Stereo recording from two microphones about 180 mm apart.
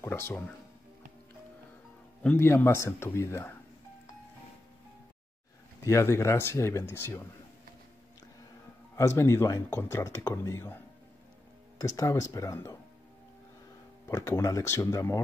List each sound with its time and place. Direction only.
0.0 s speech: 15° left (ahead or behind)
2.2 s speech: 15° left (ahead or behind)
5.9 s speech: 15° left (ahead or behind)
8.9 s speech: 15° left (ahead or behind)
11.8 s speech: 15° left (ahead or behind)
14.0 s speech: 15° left (ahead or behind)